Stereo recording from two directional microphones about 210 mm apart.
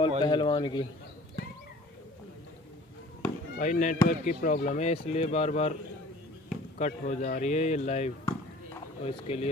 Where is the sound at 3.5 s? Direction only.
40° left (ahead or behind).